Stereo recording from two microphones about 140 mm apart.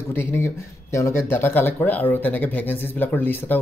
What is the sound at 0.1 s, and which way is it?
Speech, 15° left (ahead or behind).